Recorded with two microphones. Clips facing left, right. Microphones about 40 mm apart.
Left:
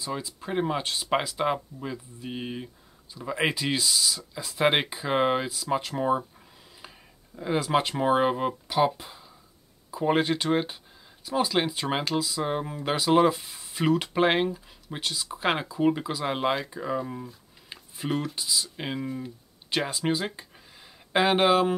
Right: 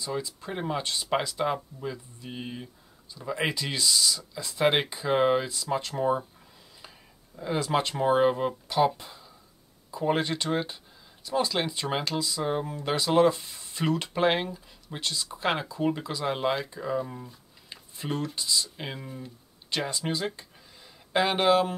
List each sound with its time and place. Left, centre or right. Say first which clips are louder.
0.0 s speech: even; centre